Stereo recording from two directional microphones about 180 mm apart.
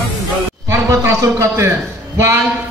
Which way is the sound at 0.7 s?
15° right (ahead or behind).